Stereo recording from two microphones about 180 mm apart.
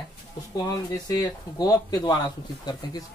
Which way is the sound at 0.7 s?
20° left (ahead or behind).